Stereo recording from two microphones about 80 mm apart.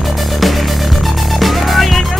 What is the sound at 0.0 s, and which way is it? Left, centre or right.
Music, centre.